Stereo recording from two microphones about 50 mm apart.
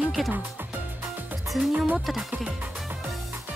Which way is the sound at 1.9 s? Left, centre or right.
Centre.